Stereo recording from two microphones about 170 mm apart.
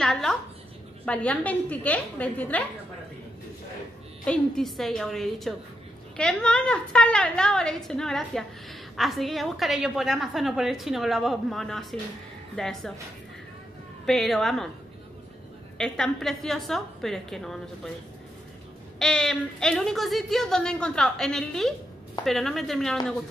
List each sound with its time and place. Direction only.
0.0 s a woman's voice: centre (ahead or behind)
4.2 s a woman's voice: 5° left (ahead or behind)
14.0 s a woman's voice: centre (ahead or behind)
15.8 s a woman's voice: centre (ahead or behind)
18.9 s a woman's voice: 5° left (ahead or behind)